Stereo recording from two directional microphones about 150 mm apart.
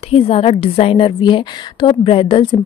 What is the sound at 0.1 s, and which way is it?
A woman's voice, 40° left (ahead or behind).